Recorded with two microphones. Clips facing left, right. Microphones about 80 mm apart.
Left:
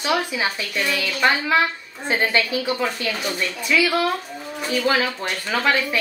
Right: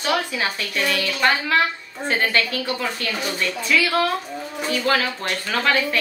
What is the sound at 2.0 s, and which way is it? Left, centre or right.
A woman's voice, centre.